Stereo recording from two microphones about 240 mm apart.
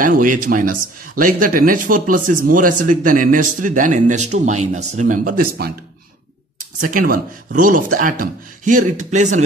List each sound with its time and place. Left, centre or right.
0.0 s a man's voice: right
6.8 s a man's voice: right